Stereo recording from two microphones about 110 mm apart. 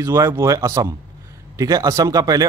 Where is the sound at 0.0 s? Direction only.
30° right (ahead or behind).